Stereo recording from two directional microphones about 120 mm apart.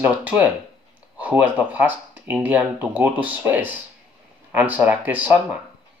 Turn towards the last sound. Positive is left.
turn(degrees=-15)  # may be behind; listen again after turning